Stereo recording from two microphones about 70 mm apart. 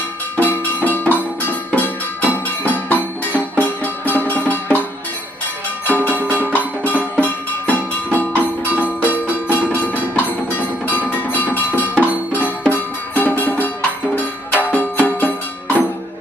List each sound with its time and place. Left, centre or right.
0.4 s music: left
5.9 s music: left